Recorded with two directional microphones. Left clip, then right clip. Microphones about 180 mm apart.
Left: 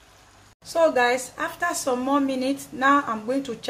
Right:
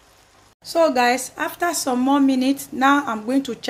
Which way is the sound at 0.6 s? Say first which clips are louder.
Right 3 dB; 35° right (ahead or behind).